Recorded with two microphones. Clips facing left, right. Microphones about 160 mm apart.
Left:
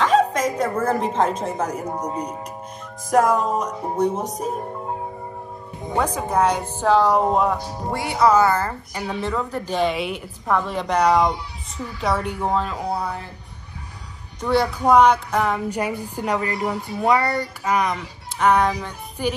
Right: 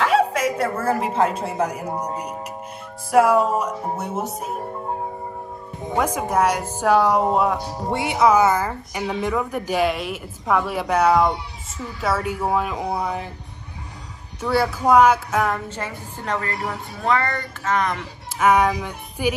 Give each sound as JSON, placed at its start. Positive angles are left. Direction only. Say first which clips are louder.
{"t": 0.0, "sound": "a woman's voice", "louder": "left 1 dB", "side_deg": -10}
{"t": 6.1, "sound": "speech", "louder": "even", "side_deg": -10}
{"t": 6.5, "sound": "a woman's voice", "louder": "even", "side_deg": 15}
{"t": 6.8, "sound": "speech", "louder": "even", "side_deg": -10}
{"t": 7.9, "sound": "speech", "louder": "even", "side_deg": -20}
{"t": 14.4, "sound": "speech", "louder": "left 1 dB", "side_deg": -5}
{"t": 15.7, "sound": "a woman's voice", "louder": "left 6 dB", "side_deg": 15}
{"t": 18.5, "sound": "speech", "louder": "right 1 dB", "side_deg": -10}